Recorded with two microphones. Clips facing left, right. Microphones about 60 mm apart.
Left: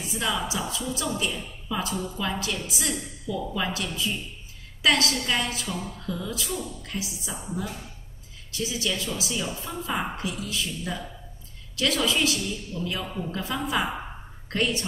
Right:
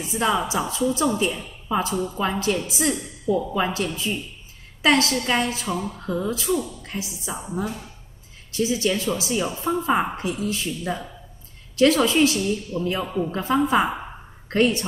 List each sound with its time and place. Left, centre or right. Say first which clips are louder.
0.0 s a woman's voice: right 6 dB; right
8.5 s a woman's voice: right 7 dB; right